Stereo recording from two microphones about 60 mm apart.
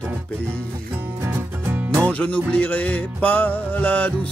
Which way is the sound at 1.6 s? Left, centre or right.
Right.